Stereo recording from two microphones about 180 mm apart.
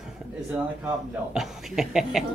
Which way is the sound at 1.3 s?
Centre (ahead or behind).